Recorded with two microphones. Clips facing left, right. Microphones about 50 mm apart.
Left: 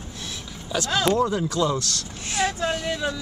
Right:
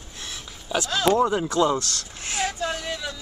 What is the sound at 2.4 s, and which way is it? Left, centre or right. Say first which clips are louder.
Vehicle: left 3 dB; left.